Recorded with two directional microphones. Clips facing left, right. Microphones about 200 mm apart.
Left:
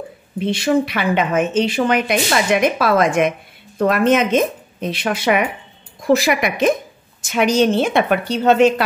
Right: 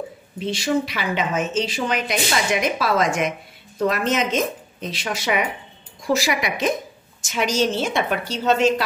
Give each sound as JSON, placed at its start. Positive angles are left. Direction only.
{"t": 0.4, "sound": "speech", "side_deg": 60}